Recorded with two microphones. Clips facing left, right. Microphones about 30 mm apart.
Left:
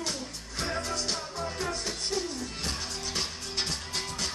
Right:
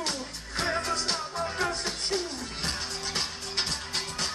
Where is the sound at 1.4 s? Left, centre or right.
Right.